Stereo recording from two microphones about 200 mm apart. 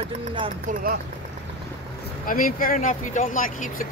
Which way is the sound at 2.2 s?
45° left (ahead or behind).